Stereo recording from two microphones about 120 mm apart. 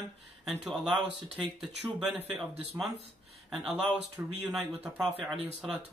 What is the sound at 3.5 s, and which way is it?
Speech, centre (ahead or behind).